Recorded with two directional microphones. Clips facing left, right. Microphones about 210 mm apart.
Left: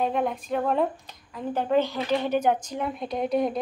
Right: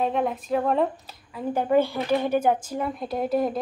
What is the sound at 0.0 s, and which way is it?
A woman's voice, centre (ahead or behind).